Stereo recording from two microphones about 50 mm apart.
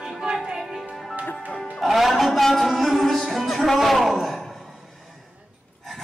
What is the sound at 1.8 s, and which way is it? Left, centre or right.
Music, centre.